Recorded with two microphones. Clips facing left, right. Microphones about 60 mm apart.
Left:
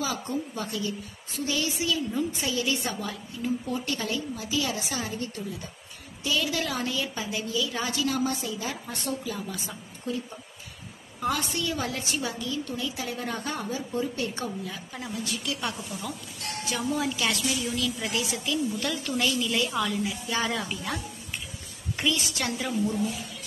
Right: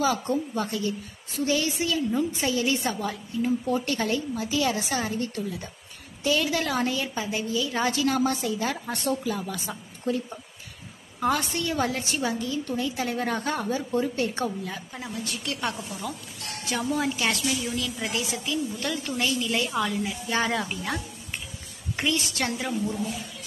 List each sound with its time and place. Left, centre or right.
0.0 s a woman's voice: right
14.9 s a woman's voice: centre
15.4 s a woman's voice: right
17.9 s a woman's voice: right
19.4 s a woman's voice: right
21.9 s a woman's voice: right